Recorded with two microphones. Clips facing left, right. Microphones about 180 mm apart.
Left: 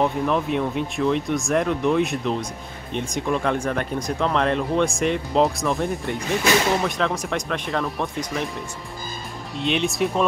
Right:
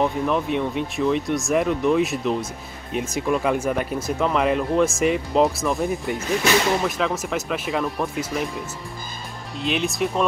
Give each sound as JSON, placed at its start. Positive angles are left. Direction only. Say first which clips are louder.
{"t": 0.0, "sound": "speech", "louder": "even", "side_deg": 0}